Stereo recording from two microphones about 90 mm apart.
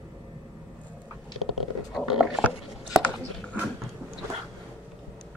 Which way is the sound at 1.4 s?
Centre (ahead or behind).